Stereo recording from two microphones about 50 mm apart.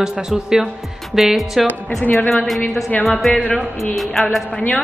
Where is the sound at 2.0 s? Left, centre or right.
Left.